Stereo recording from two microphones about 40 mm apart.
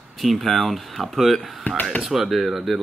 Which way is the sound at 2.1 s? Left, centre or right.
Centre.